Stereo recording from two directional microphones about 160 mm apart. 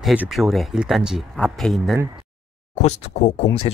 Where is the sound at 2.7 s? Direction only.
45° left (ahead or behind).